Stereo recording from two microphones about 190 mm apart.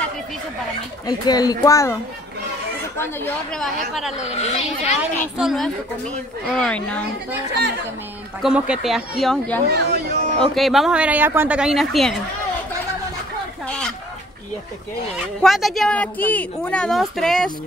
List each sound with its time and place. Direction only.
1.0 s speech: 20° left (ahead or behind)
3.0 s speech: 10° left (ahead or behind)
4.2 s speech: 35° left (ahead or behind)
5.4 s speech: centre (ahead or behind)
8.4 s speech: 5° right (ahead or behind)
9.7 s speech: 60° right (ahead or behind)
10.4 s speech: centre (ahead or behind)
13.7 s chicken: 5° left (ahead or behind)
15.1 s speech: centre (ahead or behind)